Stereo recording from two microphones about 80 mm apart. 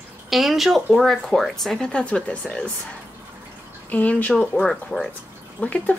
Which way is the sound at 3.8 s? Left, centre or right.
Centre.